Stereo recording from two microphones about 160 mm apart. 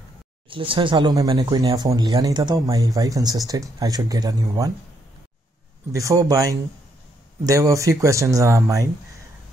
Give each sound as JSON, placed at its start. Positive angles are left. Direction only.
{"t": 0.5, "sound": "speech", "side_deg": -35}
{"t": 5.9, "sound": "speech", "side_deg": -20}